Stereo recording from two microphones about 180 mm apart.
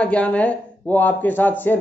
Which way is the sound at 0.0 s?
5° left (ahead or behind).